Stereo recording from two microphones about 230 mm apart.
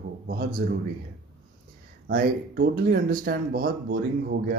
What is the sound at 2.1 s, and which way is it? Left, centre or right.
Speech, right.